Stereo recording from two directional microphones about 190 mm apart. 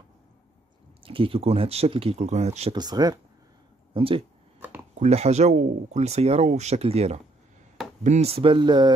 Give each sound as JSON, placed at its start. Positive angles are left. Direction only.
{"t": 1.0, "sound": "speech", "side_deg": -30}
{"t": 2.7, "sound": "speech", "side_deg": -20}